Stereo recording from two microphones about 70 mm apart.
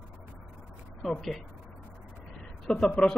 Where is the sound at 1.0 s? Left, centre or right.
Centre.